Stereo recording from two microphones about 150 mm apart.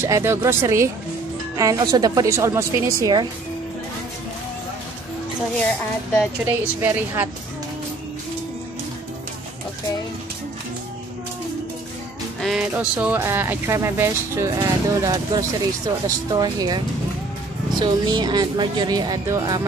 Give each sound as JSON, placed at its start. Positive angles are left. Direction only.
{"t": 0.0, "sound": "speech", "side_deg": -15}
{"t": 6.4, "sound": "speech", "side_deg": -15}
{"t": 12.4, "sound": "speech", "side_deg": 0}